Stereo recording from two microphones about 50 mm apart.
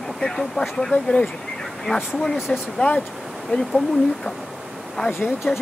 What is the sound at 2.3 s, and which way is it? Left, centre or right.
Speech, centre.